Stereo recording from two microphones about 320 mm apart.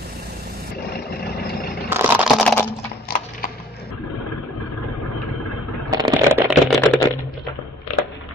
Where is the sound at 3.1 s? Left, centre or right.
Left.